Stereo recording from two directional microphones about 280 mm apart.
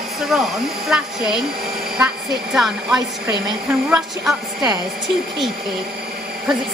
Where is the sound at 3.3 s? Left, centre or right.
Centre.